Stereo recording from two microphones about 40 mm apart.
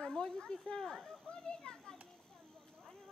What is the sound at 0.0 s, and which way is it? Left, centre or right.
A child's voice, centre.